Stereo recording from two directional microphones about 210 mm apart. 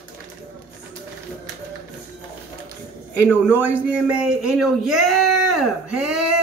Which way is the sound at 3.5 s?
10° right (ahead or behind).